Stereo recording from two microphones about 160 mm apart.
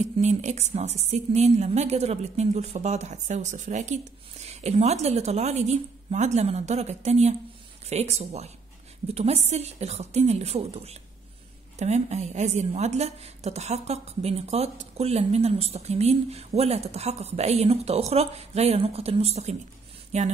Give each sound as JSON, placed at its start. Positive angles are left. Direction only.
{"t": 0.0, "sound": "a woman's voice", "side_deg": -45}